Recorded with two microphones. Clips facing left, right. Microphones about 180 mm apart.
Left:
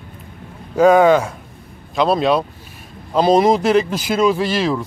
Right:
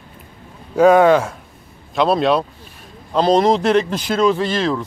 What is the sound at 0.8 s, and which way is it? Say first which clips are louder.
Speech: even; centre (ahead or behind).